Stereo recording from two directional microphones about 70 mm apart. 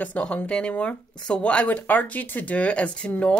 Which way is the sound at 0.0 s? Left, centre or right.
Centre.